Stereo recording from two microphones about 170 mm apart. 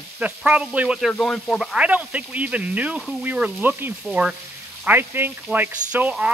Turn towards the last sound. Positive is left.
turn(degrees=-5)  # may be behind; listen again after turning